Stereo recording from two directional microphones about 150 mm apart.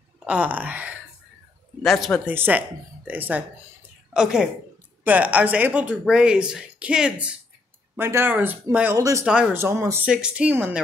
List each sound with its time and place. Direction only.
0.2 s speech: 10° right (ahead or behind)
1.8 s speech: centre (ahead or behind)
2.2 s a woman's voice: 10° right (ahead or behind)
9.2 s speech: 5° right (ahead or behind)
9.6 s speech: 20° right (ahead or behind)
10.0 s speech: 5° right (ahead or behind)